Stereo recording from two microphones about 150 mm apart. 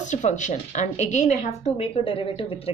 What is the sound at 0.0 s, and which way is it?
A woman's voice, 50° left (ahead or behind).